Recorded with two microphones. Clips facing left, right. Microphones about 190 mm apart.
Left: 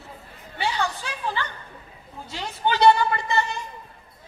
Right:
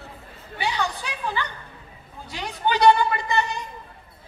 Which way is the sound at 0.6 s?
15° right (ahead or behind).